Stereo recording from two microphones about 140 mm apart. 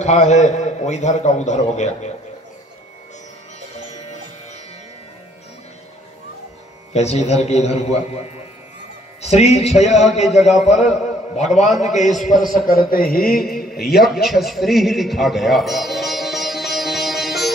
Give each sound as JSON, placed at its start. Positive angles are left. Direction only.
{"t": 0.0, "sound": "a man's voice", "side_deg": 55}
{"t": 6.9, "sound": "a man's voice", "side_deg": 50}
{"t": 10.2, "sound": "a man's voice", "side_deg": 0}
{"t": 11.3, "sound": "a man's voice", "side_deg": 55}
{"t": 12.4, "sound": "a sound", "side_deg": 80}
{"t": 13.8, "sound": "a sound", "side_deg": 0}